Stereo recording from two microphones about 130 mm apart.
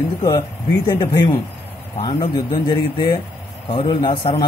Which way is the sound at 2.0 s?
45° left (ahead or behind).